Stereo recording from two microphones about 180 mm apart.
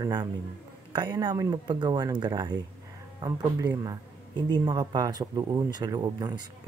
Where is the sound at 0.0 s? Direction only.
25° right (ahead or behind).